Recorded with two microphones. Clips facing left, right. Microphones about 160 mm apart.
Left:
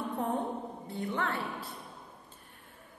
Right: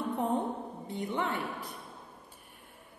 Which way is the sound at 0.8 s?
20° right (ahead or behind).